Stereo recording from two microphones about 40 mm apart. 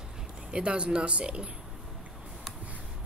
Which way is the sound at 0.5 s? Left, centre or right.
Right.